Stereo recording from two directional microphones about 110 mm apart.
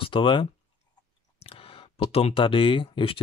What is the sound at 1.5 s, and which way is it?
Speech, 60° left (ahead or behind).